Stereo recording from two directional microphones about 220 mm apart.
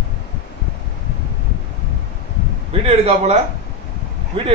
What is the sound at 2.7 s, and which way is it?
Speech, 25° right (ahead or behind).